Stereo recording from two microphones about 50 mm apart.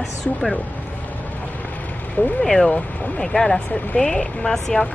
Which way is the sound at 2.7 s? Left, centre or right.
Left.